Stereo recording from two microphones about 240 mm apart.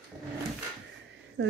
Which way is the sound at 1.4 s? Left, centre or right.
Right.